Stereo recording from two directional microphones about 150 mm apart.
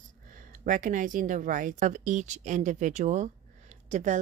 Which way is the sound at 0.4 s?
60° right (ahead or behind).